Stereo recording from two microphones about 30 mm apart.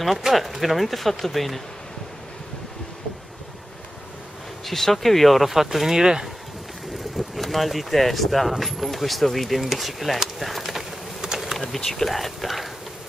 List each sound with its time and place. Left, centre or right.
0.3 s speech: centre
4.6 s speech: centre
5.5 s speech: centre
7.2 s speech: centre
9.6 s speech: centre
11.1 s bee: centre
11.8 s speech: centre